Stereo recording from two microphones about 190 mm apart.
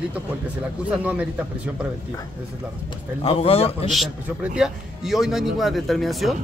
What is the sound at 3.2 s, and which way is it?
Speech, 30° left (ahead or behind).